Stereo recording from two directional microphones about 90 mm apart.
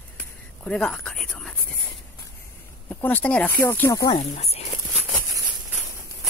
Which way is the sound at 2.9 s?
20° left (ahead or behind).